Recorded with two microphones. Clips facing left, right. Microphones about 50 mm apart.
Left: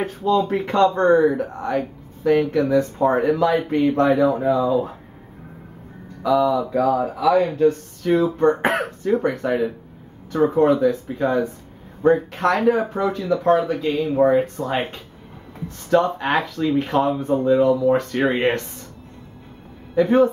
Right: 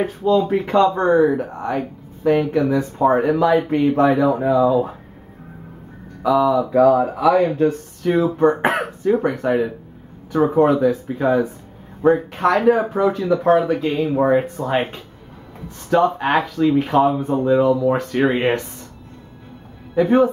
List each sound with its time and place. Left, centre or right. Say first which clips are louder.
0.0 s speech: right 2 dB; centre
6.2 s speech: right 2 dB; centre
6.8 s speech: right 7 dB; centre
20.0 s speech: right 1 dB; centre